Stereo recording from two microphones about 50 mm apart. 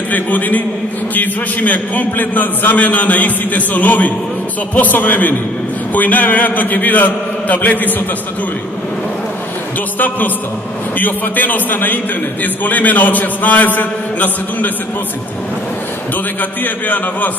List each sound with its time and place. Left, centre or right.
0.1 s a man's voice: left
9.9 s a man's voice: left
16.3 s a man's voice: left